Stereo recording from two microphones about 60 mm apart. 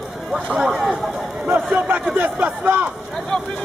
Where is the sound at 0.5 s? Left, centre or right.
Centre.